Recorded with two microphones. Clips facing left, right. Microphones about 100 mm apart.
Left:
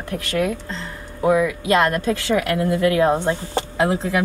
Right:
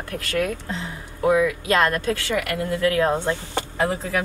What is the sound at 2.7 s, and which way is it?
Speech, 20° left (ahead or behind).